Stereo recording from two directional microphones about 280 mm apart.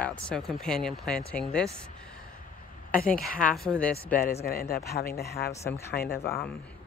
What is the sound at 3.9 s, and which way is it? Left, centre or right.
Speech, left.